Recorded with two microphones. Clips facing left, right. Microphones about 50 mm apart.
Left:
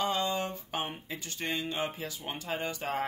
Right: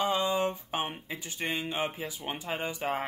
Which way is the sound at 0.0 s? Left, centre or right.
Centre.